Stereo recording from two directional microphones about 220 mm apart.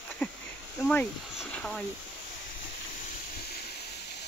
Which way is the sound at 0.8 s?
5° left (ahead or behind).